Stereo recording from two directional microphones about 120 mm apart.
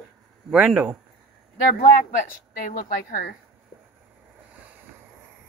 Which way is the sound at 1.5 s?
90° left.